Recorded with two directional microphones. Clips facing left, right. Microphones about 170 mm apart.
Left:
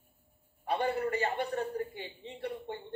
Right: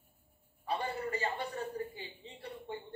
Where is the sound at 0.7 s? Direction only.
60° left (ahead or behind).